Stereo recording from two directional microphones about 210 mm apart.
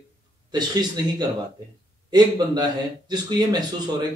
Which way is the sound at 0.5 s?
20° right (ahead or behind).